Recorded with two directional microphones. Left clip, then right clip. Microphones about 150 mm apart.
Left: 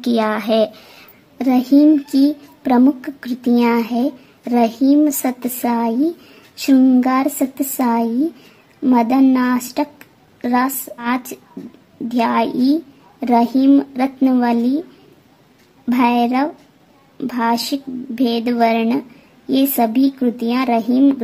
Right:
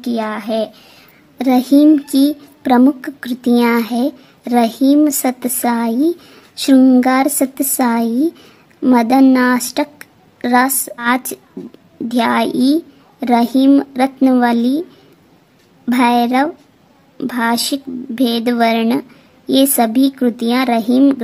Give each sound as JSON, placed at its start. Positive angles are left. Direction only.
{"t": 0.0, "sound": "speech", "side_deg": 15}
{"t": 1.4, "sound": "a child's voice", "side_deg": -15}